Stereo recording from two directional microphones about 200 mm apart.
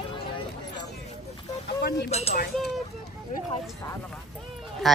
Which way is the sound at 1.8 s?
50° left (ahead or behind).